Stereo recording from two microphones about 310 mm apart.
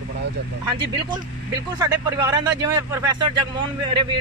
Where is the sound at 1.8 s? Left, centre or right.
Centre.